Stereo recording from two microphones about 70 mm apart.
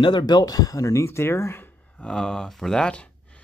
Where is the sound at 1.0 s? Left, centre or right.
Left.